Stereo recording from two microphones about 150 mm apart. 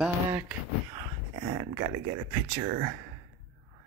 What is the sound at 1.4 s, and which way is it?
Speech, 35° right (ahead or behind).